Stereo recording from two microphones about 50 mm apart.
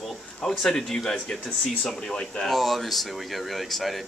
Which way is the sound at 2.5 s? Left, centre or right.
Centre.